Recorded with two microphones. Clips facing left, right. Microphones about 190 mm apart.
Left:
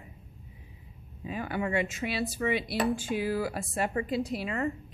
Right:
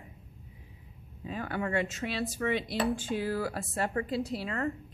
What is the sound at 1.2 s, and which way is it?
Speech, 10° left (ahead or behind).